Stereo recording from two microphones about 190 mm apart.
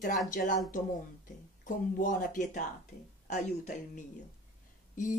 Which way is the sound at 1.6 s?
40° left (ahead or behind).